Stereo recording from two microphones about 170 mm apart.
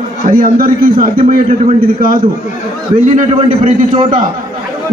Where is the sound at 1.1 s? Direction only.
40° right (ahead or behind).